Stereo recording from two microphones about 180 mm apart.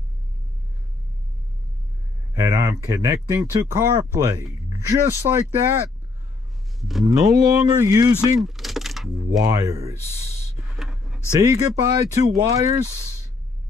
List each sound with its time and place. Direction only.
2.3 s speech: 20° right (ahead or behind)
6.8 s speech: centre (ahead or behind)
7.1 s speech: 20° right (ahead or behind)
8.4 s keys jangling: centre (ahead or behind)
9.4 s speech: 20° right (ahead or behind)
10.8 s a sound: centre (ahead or behind)
11.3 s speech: 20° right (ahead or behind)